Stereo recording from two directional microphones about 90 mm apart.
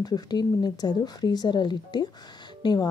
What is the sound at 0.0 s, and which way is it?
Speech, 50° left (ahead or behind).